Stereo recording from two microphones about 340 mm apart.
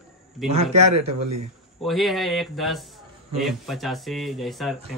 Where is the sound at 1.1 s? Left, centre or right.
Right.